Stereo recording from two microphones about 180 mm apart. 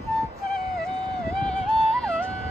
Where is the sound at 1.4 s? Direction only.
5° left (ahead or behind).